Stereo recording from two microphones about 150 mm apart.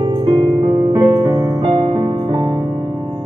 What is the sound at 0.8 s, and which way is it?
Music, 25° right (ahead or behind).